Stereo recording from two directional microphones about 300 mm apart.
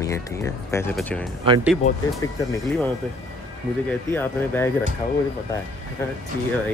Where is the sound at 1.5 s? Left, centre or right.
Centre.